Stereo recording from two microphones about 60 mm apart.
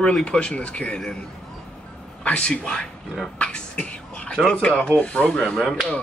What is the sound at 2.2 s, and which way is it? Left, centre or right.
Speech, centre.